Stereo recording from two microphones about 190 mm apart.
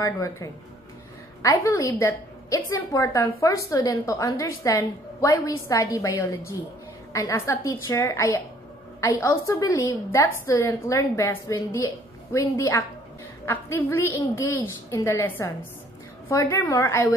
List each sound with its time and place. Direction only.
0.0 s a woman's voice: 15° left (ahead or behind)